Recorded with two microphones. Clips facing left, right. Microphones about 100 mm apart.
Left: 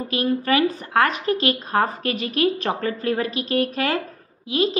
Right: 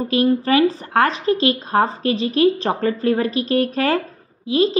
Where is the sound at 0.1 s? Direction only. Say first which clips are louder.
Right 4 dB; 35° right (ahead or behind).